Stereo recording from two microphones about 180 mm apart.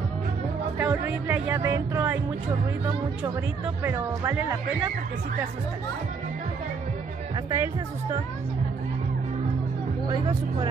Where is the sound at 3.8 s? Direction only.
15° right (ahead or behind).